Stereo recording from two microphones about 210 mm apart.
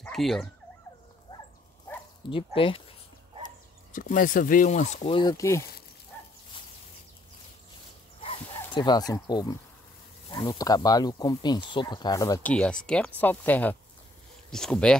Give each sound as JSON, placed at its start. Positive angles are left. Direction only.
{"t": 0.0, "sound": "speech", "side_deg": 0}
{"t": 1.3, "sound": "dog", "side_deg": 20}
{"t": 2.2, "sound": "speech", "side_deg": 25}
{"t": 3.9, "sound": "speech", "side_deg": 40}
{"t": 5.1, "sound": "speech", "side_deg": 20}
{"t": 8.5, "sound": "speech", "side_deg": 20}
{"t": 12.8, "sound": "speech", "side_deg": 5}